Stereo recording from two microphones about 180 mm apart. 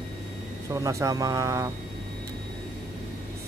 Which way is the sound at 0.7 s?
20° right (ahead or behind).